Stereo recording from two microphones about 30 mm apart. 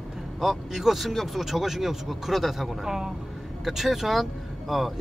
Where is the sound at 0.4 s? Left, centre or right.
Centre.